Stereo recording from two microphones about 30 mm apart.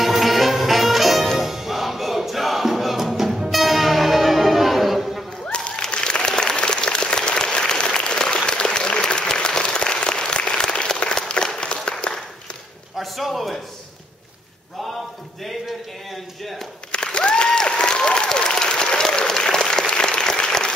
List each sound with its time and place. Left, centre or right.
0.0 s music: centre
5.5 s applause: left
13.0 s a sound: centre
16.9 s applause: left